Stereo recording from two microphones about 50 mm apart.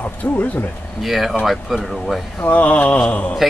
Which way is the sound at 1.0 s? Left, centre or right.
Centre.